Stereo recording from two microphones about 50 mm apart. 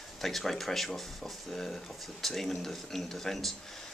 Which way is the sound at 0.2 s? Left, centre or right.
Centre.